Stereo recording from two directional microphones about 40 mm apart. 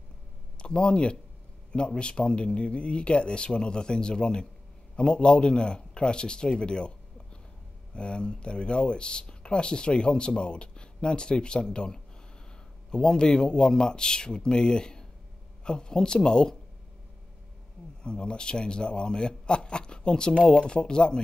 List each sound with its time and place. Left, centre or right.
0.6 s speech: left
18.0 s speech: left